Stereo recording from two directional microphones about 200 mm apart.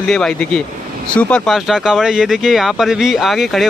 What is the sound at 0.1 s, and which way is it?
Speech, 5° left (ahead or behind).